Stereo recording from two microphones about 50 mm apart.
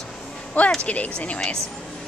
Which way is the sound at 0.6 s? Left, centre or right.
Left.